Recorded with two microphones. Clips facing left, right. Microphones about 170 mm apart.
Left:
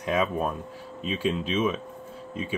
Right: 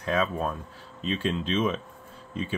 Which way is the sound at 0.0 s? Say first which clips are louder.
Left 1 dB; 15° left (ahead or behind).